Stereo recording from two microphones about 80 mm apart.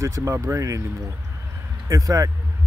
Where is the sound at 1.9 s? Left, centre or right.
Right.